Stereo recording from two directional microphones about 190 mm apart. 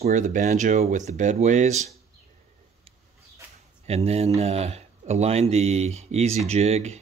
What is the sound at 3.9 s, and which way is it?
Speech, 35° right (ahead or behind).